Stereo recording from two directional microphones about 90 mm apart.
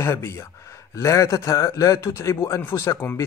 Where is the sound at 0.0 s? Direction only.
30° left (ahead or behind).